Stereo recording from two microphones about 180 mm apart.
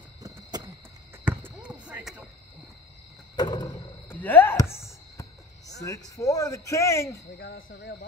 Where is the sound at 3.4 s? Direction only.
25° left (ahead or behind).